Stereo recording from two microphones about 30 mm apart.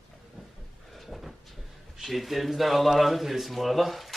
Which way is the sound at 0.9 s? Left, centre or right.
Centre.